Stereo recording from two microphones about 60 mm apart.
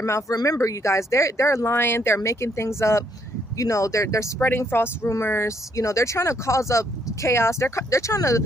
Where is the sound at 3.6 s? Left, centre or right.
Left.